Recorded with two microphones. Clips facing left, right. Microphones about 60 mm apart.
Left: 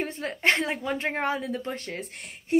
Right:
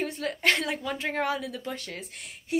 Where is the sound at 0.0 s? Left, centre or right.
Left.